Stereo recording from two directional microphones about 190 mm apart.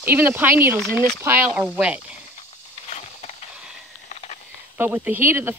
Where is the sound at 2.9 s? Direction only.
35° left (ahead or behind).